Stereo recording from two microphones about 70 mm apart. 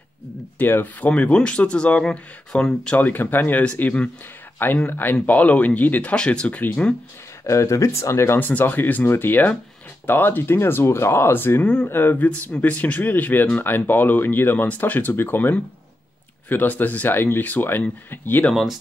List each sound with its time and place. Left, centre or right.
0.6 s speech: left
7.4 s speech: left
8.4 s speech: left
11.6 s speech: centre
11.9 s speech: left
18.5 s speech: centre